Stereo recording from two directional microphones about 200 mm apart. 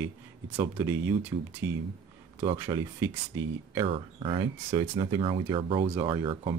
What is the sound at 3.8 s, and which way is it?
Speech, 25° right (ahead or behind).